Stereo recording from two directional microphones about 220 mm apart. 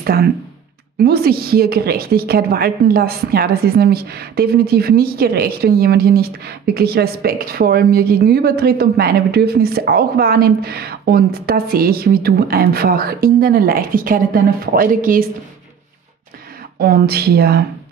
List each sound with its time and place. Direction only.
0.0 s a woman's voice: 45° right (ahead or behind)
16.7 s a woman's voice: 45° right (ahead or behind)